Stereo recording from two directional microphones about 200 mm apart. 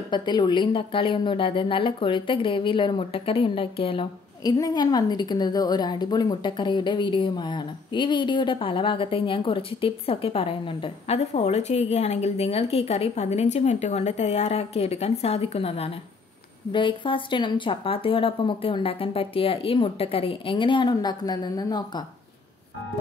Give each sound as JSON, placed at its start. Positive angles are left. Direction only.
{"t": 0.1, "sound": "a woman's voice", "side_deg": 20}